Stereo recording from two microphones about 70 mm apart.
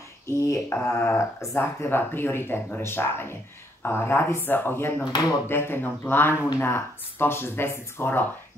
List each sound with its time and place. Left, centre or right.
0.3 s speech: left
5.0 s speech: left
5.5 s speech: left